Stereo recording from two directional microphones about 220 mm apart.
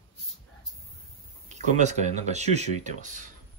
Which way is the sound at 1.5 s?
30° right (ahead or behind).